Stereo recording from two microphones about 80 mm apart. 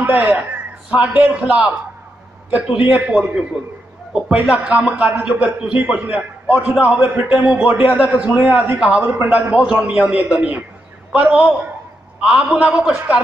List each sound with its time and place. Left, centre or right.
0.0 s a man's voice: centre